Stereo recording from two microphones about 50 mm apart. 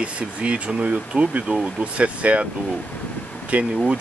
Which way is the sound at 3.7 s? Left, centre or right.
Centre.